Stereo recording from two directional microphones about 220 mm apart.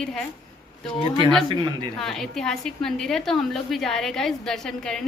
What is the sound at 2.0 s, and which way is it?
A woman's voice, centre (ahead or behind).